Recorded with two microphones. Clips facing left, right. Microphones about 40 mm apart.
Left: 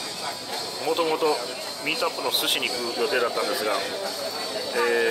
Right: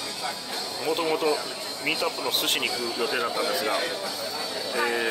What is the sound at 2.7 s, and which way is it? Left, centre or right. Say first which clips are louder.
A man's voice: left 3 dB; centre.